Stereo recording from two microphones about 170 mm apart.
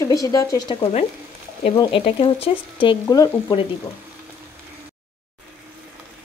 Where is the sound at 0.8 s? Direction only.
40° left (ahead or behind).